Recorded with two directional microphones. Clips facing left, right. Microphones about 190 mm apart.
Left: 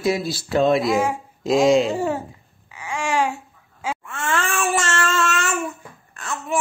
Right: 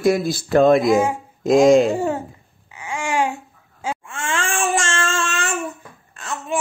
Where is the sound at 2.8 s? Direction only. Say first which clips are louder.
Even; 25° right (ahead or behind).